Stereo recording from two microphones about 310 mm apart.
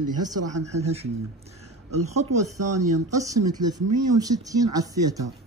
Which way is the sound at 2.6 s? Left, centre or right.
Right.